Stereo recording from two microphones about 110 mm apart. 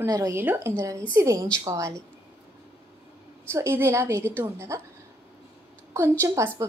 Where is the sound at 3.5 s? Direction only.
25° right (ahead or behind).